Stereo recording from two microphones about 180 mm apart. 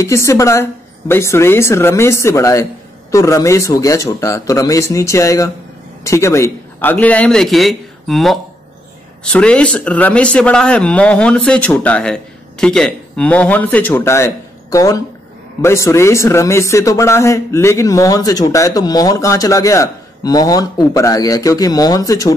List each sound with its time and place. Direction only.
0.0 s a man's voice: 15° left (ahead or behind)